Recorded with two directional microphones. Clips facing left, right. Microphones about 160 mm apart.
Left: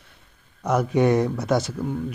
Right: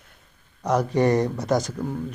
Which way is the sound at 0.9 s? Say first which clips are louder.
Left 2 dB; 5° left (ahead or behind).